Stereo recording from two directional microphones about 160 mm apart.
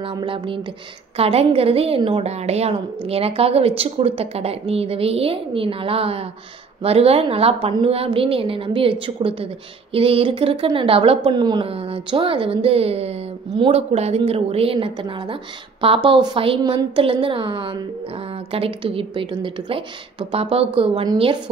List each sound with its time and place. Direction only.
0.0 s a woman's voice: 30° right (ahead or behind)